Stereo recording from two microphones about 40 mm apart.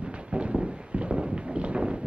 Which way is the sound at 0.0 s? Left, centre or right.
Right.